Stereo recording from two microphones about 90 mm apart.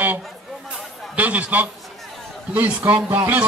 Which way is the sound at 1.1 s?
15° right (ahead or behind).